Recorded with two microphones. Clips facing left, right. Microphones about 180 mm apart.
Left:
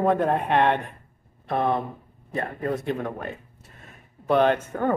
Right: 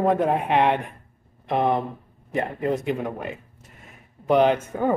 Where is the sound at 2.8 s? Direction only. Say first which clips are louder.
Right 2 dB; 10° right (ahead or behind).